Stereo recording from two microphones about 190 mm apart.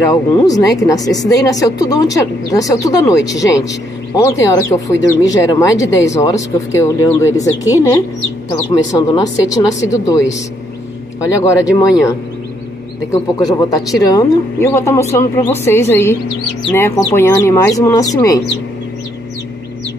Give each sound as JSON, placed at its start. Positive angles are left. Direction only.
{"t": 0.0, "sound": "speech", "side_deg": 15}
{"t": 11.4, "sound": "speech", "side_deg": 15}
{"t": 13.1, "sound": "speech", "side_deg": 20}